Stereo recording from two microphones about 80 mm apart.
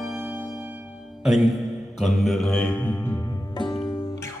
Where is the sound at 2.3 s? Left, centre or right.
Centre.